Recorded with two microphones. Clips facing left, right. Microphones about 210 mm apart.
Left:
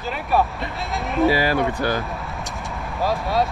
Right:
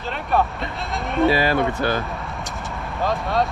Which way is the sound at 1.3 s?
15° left (ahead or behind).